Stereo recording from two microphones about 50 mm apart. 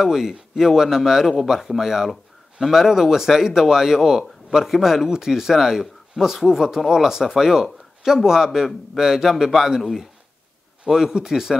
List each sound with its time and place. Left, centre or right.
0.0 s speech: centre